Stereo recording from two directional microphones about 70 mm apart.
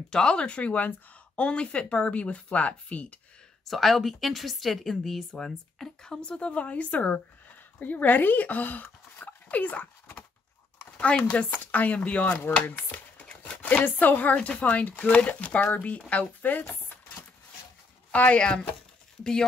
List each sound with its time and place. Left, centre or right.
0.1 s speech: centre
3.6 s a woman's voice: centre; by 12.5 s left
12.5 s a sound: left
13.8 s speech: left
18.1 s speech: centre